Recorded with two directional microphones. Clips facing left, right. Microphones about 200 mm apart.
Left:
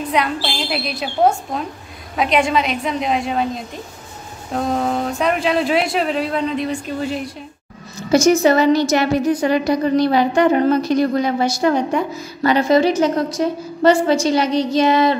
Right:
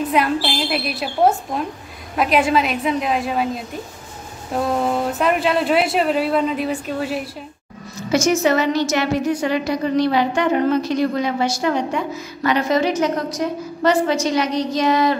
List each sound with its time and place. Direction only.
0.1 s speech: centre (ahead or behind)
4.7 s speech: 5° right (ahead or behind)
8.1 s a woman's voice: 35° left (ahead or behind)